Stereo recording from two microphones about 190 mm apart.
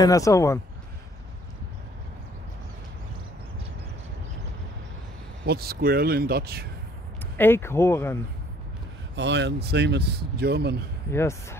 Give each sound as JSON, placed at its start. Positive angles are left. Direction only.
{"t": 0.0, "sound": "speech", "side_deg": 15}
{"t": 5.4, "sound": "speech", "side_deg": -55}
{"t": 7.3, "sound": "speech", "side_deg": 10}
{"t": 9.1, "sound": "speech", "side_deg": -70}
{"t": 11.1, "sound": "speech", "side_deg": 15}